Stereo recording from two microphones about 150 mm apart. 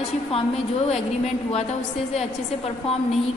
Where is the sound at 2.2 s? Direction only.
45° left (ahead or behind).